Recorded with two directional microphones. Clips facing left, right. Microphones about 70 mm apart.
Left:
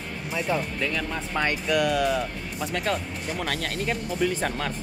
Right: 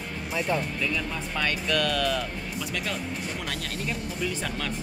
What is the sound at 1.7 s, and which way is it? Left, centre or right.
Speech, centre.